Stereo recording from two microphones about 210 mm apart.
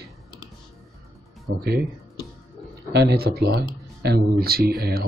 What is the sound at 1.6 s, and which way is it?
Speech, 50° right (ahead or behind).